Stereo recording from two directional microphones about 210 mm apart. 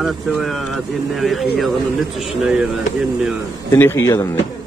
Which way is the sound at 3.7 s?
10° left (ahead or behind).